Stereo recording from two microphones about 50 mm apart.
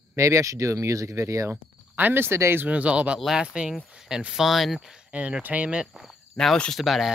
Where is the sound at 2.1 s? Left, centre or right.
Right.